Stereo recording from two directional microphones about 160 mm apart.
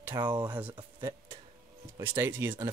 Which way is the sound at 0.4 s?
10° right (ahead or behind).